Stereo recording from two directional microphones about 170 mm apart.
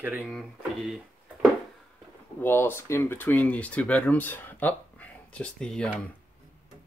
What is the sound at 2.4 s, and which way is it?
Speech, 10° left (ahead or behind).